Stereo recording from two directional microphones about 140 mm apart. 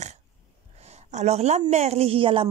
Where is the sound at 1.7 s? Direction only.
50° right (ahead or behind).